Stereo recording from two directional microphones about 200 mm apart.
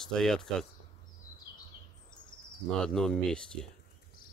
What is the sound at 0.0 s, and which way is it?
Speech, 5° left (ahead or behind).